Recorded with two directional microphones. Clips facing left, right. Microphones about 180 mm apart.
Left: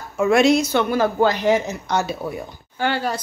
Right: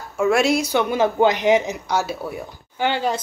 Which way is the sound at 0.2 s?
5° right (ahead or behind).